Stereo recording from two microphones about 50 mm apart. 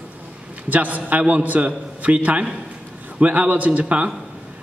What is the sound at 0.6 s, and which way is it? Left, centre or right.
A man's voice, right.